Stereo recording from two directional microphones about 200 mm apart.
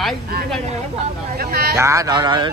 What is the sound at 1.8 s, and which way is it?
Speech, 15° right (ahead or behind).